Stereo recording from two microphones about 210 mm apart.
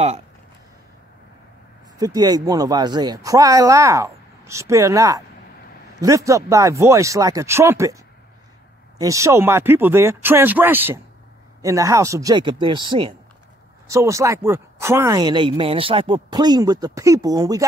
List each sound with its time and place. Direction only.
2.0 s speech: 15° right (ahead or behind)